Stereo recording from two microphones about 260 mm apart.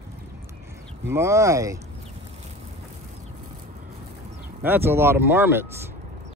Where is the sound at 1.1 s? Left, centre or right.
Centre.